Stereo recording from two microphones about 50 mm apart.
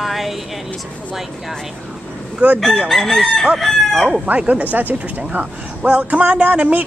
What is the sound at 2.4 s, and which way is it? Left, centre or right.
Speech, right.